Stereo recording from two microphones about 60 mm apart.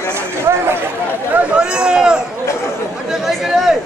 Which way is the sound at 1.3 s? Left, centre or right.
Centre.